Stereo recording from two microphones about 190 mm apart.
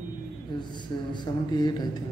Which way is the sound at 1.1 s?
25° left (ahead or behind).